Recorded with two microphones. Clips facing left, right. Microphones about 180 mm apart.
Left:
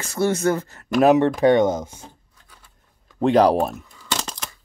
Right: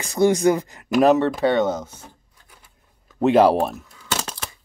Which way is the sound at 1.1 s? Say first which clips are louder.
Left 3 dB; 15° left (ahead or behind).